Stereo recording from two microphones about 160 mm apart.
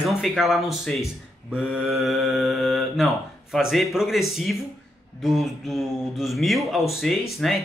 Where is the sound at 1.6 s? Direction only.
5° right (ahead or behind).